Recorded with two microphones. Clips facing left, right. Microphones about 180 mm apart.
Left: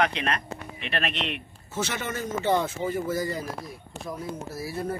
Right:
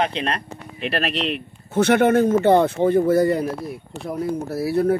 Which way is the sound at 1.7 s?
60° right (ahead or behind).